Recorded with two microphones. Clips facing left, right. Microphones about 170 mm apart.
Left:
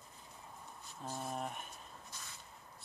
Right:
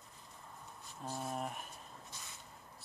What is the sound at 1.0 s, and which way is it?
Speech, centre (ahead or behind).